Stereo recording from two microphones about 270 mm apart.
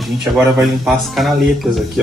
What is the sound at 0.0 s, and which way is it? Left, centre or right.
Speech, centre.